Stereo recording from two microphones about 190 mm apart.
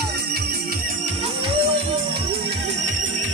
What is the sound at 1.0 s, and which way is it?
Music, 30° right (ahead or behind).